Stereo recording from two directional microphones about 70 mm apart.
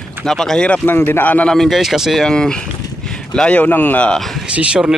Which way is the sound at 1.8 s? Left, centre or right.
Centre.